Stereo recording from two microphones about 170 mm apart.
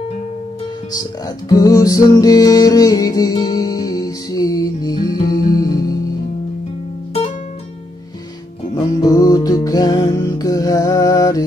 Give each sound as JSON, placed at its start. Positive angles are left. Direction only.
{"t": 1.5, "sound": "music", "side_deg": 20}
{"t": 8.7, "sound": "music", "side_deg": 20}